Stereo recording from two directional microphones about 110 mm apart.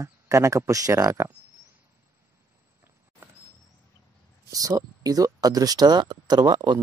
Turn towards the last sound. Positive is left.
turn(degrees=-35)  # may be behind; listen again after turning